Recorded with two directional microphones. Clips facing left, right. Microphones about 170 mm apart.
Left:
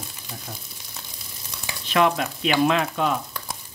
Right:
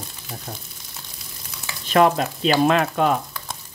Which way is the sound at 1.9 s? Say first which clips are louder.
Right 4 dB; 40° right (ahead or behind).